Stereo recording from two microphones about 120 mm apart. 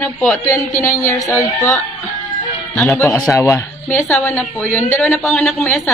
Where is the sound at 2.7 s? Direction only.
10° left (ahead or behind).